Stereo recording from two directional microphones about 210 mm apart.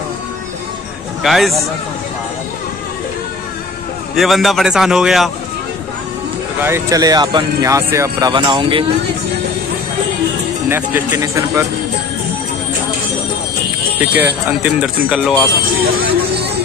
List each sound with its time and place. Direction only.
1.2 s a man's voice: centre (ahead or behind)
4.2 s speech: centre (ahead or behind)
6.6 s speech: 15° right (ahead or behind)
10.7 s speech: 10° right (ahead or behind)
13.9 s speech: 10° right (ahead or behind)